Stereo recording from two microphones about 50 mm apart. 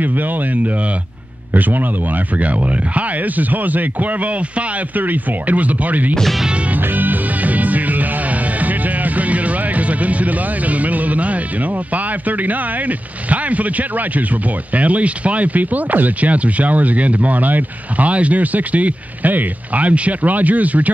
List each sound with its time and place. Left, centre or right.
0.0 s speech: right
6.7 s music: right